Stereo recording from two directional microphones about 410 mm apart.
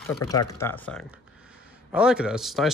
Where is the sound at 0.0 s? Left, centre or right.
Centre.